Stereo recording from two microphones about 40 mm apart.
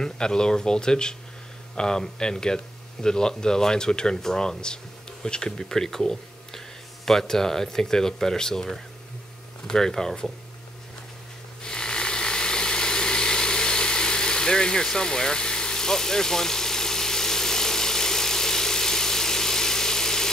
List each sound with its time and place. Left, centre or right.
0.0 s speech: centre
11.6 s vehicle: centre